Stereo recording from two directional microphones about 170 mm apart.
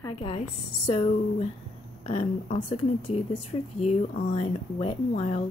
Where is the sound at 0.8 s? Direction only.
30° left (ahead or behind).